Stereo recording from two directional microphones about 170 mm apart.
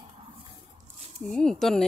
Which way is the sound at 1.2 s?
5° left (ahead or behind).